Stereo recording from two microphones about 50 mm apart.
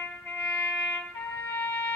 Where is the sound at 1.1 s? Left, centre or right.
Left.